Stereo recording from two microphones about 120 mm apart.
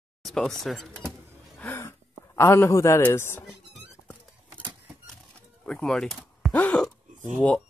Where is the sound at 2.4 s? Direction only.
20° left (ahead or behind).